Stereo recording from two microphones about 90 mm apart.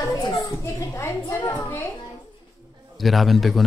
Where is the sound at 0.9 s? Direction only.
30° left (ahead or behind).